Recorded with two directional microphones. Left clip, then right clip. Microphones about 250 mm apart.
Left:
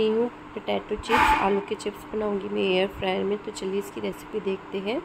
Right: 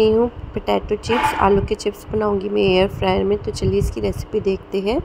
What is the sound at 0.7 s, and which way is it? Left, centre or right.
Speech, right.